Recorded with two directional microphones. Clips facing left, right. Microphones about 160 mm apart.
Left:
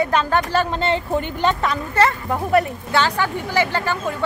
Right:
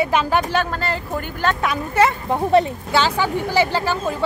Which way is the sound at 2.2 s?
25° right (ahead or behind).